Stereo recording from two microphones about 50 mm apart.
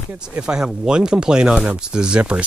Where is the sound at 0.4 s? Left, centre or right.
Centre.